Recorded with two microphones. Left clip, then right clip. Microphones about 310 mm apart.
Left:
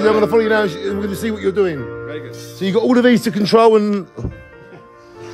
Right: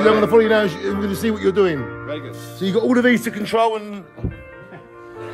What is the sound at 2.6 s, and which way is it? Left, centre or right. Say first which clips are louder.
Speech: left 3 dB; centre.